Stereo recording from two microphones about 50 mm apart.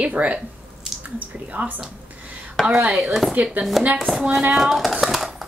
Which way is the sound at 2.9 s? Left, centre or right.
Centre.